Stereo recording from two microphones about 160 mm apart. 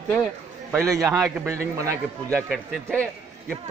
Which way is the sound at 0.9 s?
20° right (ahead or behind).